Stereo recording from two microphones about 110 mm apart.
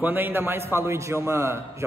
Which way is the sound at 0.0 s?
20° right (ahead or behind).